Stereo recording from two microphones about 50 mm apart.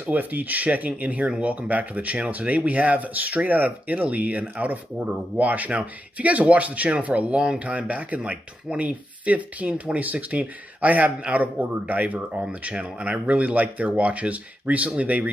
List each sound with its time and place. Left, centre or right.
0.0 s speech: right